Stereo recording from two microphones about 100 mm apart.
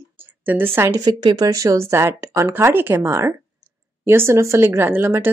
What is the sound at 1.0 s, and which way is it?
A woman's voice, 45° right (ahead or behind).